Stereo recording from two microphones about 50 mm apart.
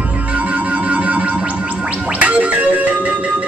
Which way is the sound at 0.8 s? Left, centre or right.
Right.